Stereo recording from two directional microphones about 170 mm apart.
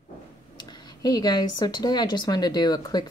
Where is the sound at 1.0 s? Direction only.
25° left (ahead or behind).